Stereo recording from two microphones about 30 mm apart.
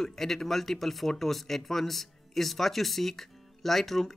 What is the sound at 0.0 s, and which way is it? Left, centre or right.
Speech, centre.